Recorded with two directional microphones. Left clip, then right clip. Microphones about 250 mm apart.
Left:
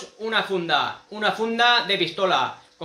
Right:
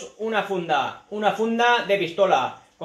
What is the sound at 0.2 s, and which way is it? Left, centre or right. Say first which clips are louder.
Speech: left 1 dB; centre.